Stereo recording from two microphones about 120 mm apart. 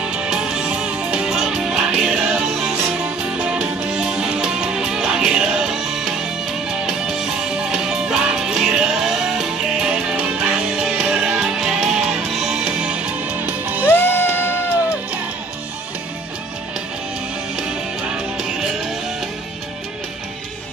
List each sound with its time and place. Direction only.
0.1 s music: 5° right (ahead or behind)
13.8 s music: 20° left (ahead or behind)
17.6 s music: 5° right (ahead or behind)